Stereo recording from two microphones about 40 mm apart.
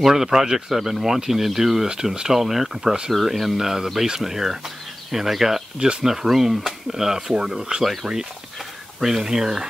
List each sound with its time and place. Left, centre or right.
0.0 s speech: centre
5.8 s speech: right
6.0 s speech: centre
7.8 s speech: centre